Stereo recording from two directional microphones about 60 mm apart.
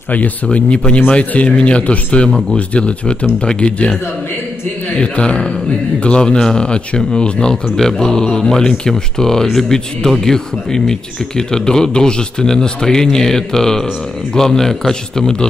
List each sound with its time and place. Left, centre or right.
0.1 s speech: left
4.9 s speech: centre